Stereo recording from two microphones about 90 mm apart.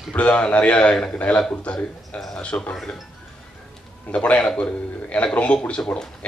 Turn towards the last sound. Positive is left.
turn(degrees=10)  # may be behind; listen again after turning